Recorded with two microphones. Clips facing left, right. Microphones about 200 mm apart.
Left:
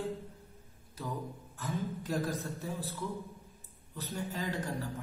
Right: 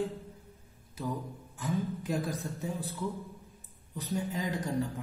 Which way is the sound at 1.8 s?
15° right (ahead or behind).